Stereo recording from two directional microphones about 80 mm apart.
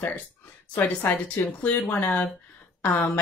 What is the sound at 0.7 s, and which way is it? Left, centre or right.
Speech, left.